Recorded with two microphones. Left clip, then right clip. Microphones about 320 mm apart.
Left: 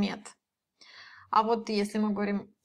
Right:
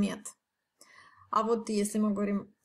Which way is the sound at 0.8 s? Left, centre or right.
Centre.